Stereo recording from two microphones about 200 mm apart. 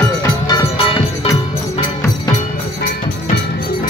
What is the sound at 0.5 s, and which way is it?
Music, 20° left (ahead or behind).